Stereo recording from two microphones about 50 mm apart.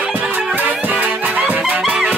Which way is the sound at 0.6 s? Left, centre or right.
Right.